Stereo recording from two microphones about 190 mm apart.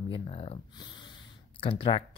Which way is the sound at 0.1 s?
30° left (ahead or behind).